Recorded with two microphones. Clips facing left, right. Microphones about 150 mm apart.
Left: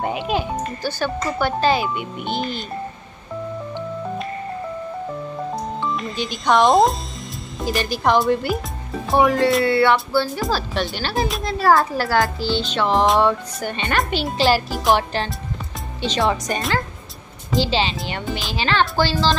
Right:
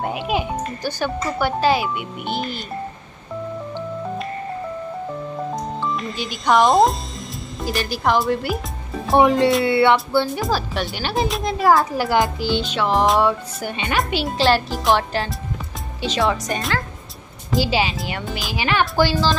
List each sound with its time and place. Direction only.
0.2 s speech: 10° right (ahead or behind)
5.8 s speech: centre (ahead or behind)
9.2 s speech: 20° right (ahead or behind); by 18.5 s centre (ahead or behind)
18.5 s speech: 15° right (ahead or behind)